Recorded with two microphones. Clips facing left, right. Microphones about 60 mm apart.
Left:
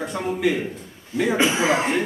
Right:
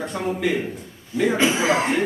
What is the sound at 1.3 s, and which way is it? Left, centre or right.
Speech, centre.